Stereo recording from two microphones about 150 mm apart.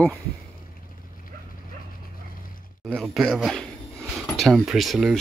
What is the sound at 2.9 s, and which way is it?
Speech, centre (ahead or behind).